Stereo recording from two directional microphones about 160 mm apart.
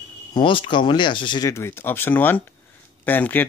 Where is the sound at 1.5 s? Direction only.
15° left (ahead or behind).